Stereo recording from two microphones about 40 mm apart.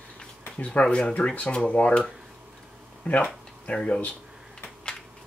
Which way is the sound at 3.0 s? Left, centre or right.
Left.